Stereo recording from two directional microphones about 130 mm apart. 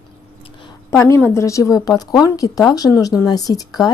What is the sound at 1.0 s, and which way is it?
A woman's voice, 20° left (ahead or behind).